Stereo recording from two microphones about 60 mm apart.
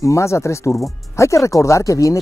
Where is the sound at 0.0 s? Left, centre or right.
Left.